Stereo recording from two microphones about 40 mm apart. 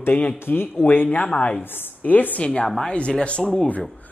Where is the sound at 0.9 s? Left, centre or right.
Left.